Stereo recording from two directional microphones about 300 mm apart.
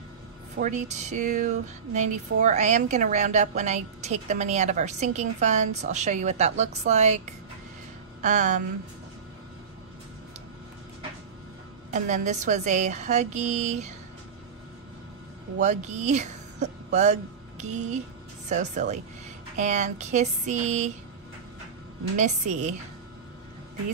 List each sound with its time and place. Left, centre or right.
0.6 s a woman's voice: right
8.2 s a woman's voice: right
11.9 s a woman's voice: right
15.6 s a woman's voice: right
22.1 s a woman's voice: right